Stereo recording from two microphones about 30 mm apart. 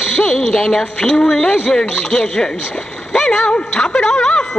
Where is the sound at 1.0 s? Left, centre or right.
Centre.